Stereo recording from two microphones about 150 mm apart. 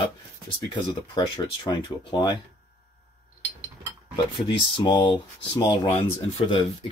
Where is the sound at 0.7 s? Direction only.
30° left (ahead or behind).